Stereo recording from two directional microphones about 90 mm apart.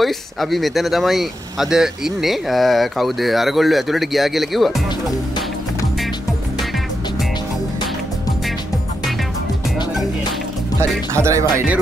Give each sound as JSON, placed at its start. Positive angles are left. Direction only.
{"t": 0.0, "sound": "speech", "side_deg": 0}
{"t": 11.1, "sound": "speech", "side_deg": -35}